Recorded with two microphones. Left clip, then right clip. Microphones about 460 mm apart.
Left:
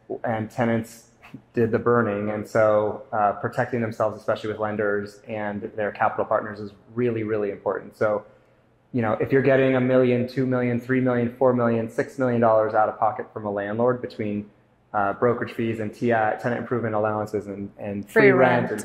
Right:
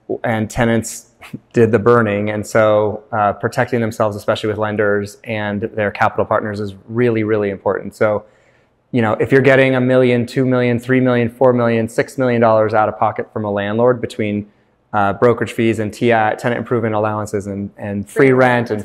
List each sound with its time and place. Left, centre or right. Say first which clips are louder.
0.2 s speech: right 7 dB; right
18.1 s a woman's voice: right 3 dB; left